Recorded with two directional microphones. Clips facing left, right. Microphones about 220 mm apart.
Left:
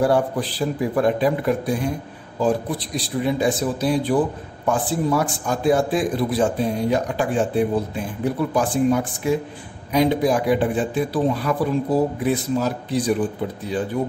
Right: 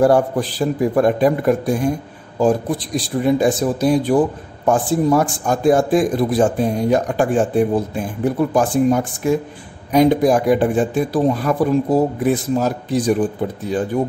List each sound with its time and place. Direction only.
0.0 s a man's voice: 45° right (ahead or behind)